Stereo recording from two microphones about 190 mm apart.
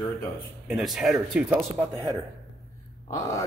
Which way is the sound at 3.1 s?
15° left (ahead or behind).